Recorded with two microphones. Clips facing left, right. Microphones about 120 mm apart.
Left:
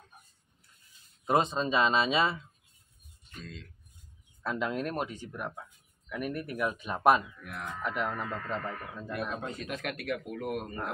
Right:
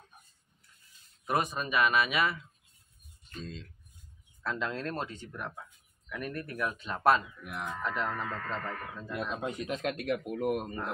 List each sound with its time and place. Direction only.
1.2 s speech: 25° left (ahead or behind)
4.4 s speech: 15° left (ahead or behind)
7.4 s speech: 15° right (ahead or behind)
7.8 s speech: 15° left (ahead or behind)
9.4 s speech: 15° right (ahead or behind)